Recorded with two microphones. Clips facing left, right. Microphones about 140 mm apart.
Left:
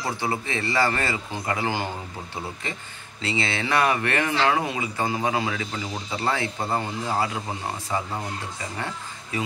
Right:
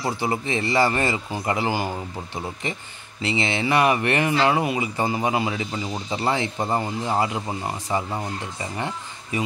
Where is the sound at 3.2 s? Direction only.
15° right (ahead or behind).